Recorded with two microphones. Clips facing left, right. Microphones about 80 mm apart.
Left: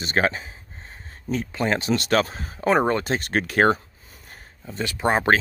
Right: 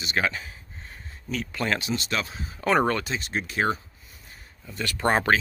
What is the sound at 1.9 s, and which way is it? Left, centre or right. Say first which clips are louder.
Speech: left 8 dB; left.